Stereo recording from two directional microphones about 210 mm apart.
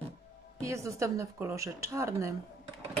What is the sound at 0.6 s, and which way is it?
Speech, 15° right (ahead or behind).